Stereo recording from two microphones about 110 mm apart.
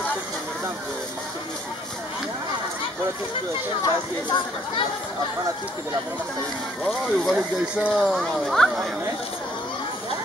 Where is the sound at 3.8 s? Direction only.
45° left (ahead or behind).